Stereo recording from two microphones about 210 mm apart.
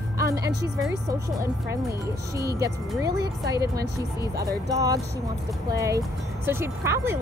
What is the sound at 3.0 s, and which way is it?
Speech, 15° right (ahead or behind).